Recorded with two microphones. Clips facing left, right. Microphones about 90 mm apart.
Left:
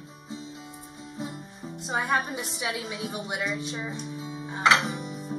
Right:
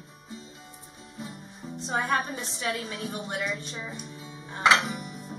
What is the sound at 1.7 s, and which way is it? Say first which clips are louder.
Music: even; 5° left (ahead or behind).